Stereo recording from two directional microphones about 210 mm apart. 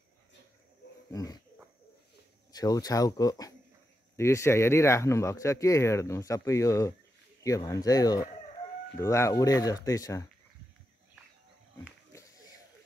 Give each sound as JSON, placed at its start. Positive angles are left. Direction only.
{"t": 1.1, "sound": "speech", "side_deg": 15}
{"t": 2.5, "sound": "speech", "side_deg": 15}